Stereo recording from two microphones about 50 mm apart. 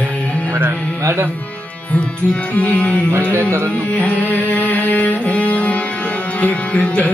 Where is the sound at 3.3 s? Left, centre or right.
Right.